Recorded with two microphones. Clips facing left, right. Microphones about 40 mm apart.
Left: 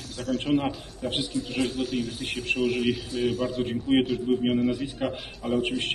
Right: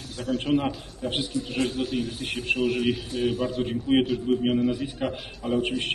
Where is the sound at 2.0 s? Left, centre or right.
Right.